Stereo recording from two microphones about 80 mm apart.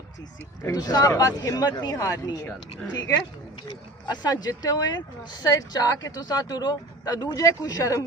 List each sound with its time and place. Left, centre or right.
0.7 s speech: left
2.0 s speech: left
3.6 s speech: left